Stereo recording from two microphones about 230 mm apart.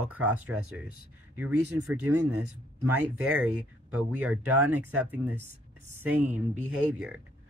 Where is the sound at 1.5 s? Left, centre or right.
Right.